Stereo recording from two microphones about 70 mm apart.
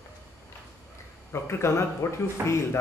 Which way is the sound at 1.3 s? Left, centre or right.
Left.